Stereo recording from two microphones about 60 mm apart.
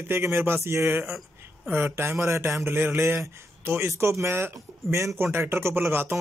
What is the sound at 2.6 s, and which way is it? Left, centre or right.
Speech, right.